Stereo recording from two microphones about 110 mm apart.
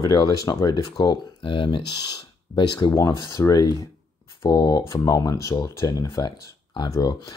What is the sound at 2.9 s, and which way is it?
Speech, 25° left (ahead or behind).